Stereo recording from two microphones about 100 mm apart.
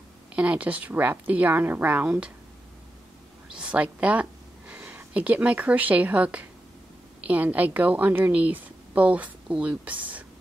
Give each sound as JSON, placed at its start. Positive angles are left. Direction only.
{"t": 0.3, "sound": "a woman's voice", "side_deg": -15}
{"t": 3.4, "sound": "a woman's voice", "side_deg": -10}